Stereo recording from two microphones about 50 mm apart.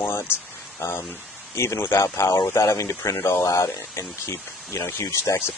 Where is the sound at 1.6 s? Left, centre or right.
Left.